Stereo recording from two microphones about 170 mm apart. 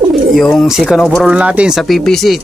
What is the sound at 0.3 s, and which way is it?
Speech, centre (ahead or behind).